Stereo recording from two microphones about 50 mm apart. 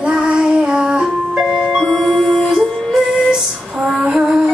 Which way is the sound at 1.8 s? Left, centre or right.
Centre.